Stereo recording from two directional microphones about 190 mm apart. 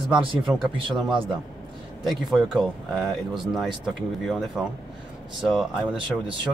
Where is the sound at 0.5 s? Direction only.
15° right (ahead or behind).